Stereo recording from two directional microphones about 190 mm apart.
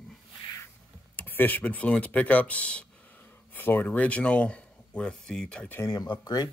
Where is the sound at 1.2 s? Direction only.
10° left (ahead or behind).